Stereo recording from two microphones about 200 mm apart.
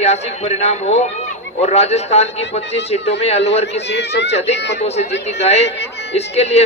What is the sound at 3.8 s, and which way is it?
Speech, 60° left (ahead or behind).